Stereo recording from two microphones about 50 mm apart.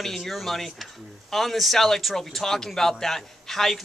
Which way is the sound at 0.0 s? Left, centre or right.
Centre.